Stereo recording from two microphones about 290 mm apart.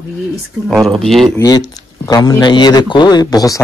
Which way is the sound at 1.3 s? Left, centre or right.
Centre.